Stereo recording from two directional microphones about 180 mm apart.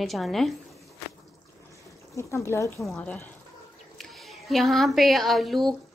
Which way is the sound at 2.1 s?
15° left (ahead or behind).